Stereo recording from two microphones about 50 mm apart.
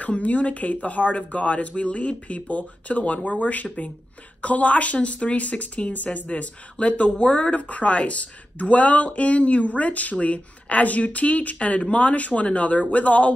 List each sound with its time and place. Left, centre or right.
0.0 s speech: left